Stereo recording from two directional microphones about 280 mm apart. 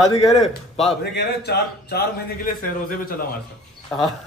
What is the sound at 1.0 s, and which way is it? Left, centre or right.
A man's voice, left.